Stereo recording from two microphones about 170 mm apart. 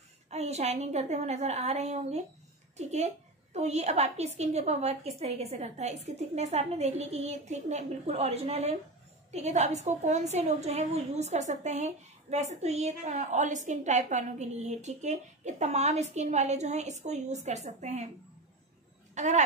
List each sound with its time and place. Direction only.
0.3 s a woman's voice: 40° right (ahead or behind)
19.1 s speech: 45° right (ahead or behind)